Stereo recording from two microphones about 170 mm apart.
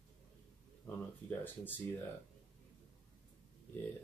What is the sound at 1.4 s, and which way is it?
Speech, 10° left (ahead or behind).